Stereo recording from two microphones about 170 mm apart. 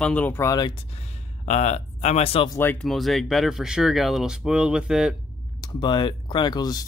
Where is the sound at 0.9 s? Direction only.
45° left (ahead or behind).